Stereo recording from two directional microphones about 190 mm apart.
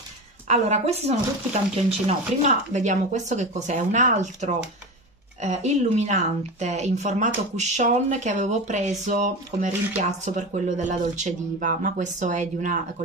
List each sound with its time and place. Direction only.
0.5 s speech: 35° right (ahead or behind)